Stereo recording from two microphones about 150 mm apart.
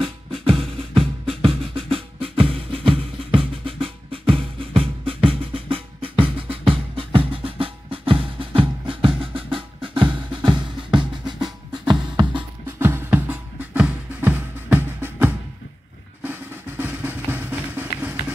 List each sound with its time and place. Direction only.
0.0 s music: 40° right (ahead or behind)
12.6 s music: 15° right (ahead or behind)
16.2 s drum: 15° right (ahead or behind)